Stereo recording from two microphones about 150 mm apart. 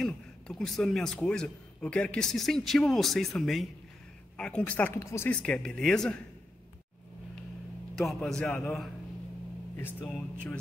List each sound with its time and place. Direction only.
0.0 s a man's voice: 5° left (ahead or behind); by 5.3 s 20° left (ahead or behind)
5.3 s a man's voice: 5° left (ahead or behind)
7.9 s a man's voice: centre (ahead or behind)
9.8 s speech: 15° left (ahead or behind)